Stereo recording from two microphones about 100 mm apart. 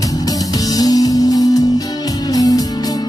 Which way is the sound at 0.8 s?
40° left (ahead or behind).